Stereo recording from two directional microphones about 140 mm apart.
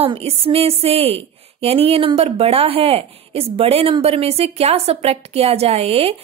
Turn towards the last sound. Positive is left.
turn(degrees=-45)  # may be behind; listen again after turning